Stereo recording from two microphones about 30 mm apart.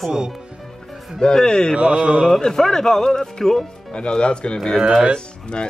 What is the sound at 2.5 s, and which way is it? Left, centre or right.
Speech, centre.